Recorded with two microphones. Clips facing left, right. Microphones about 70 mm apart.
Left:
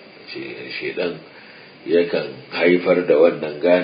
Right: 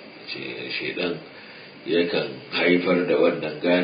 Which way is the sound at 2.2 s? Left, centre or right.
Left.